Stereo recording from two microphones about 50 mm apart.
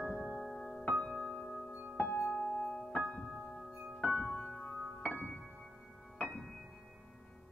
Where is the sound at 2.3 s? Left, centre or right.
Centre.